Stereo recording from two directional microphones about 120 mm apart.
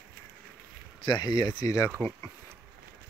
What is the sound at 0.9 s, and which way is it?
Speech, 40° left (ahead or behind).